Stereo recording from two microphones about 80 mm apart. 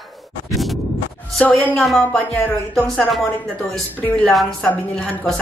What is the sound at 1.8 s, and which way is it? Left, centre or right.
Speech, centre.